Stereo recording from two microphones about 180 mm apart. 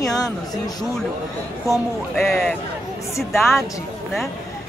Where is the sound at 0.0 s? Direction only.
20° left (ahead or behind).